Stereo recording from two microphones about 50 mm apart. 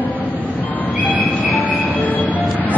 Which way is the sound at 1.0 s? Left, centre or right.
Left.